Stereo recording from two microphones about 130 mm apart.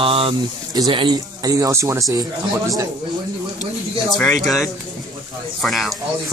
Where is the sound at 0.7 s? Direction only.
35° right (ahead or behind).